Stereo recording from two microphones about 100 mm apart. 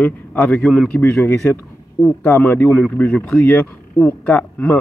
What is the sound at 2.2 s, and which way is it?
Speech, 20° left (ahead or behind).